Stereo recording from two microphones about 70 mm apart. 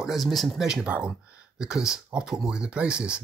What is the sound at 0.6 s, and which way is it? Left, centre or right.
Speech, centre.